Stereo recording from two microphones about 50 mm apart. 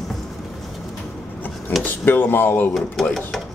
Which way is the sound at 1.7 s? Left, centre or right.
Left.